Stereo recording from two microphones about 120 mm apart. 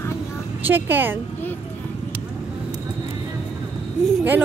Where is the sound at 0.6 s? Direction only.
15° right (ahead or behind).